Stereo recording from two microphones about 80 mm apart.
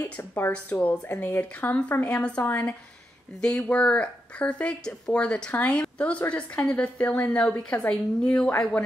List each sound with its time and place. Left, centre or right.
0.2 s speech: left
3.3 s speech: centre